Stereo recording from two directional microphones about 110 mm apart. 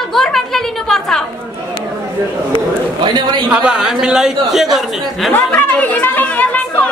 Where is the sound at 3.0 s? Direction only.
40° right (ahead or behind).